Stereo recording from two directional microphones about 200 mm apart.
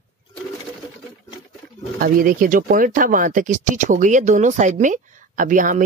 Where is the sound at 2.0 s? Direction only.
45° right (ahead or behind).